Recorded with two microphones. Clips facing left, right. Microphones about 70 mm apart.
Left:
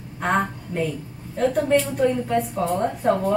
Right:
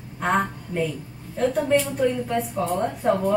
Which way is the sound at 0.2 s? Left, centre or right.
Centre.